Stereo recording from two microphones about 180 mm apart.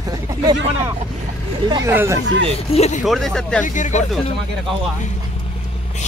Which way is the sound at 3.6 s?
45° left (ahead or behind).